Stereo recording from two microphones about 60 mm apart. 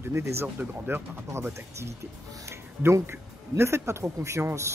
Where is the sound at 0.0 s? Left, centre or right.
Right.